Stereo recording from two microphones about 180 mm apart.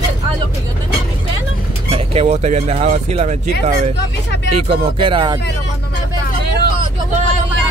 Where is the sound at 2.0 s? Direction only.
35° right (ahead or behind).